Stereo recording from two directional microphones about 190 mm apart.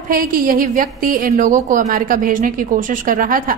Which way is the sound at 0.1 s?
50° right (ahead or behind).